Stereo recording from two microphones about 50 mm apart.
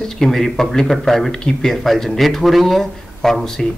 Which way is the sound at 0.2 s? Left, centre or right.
Centre.